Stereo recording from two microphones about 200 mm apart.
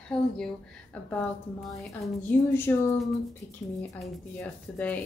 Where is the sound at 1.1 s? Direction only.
5° left (ahead or behind).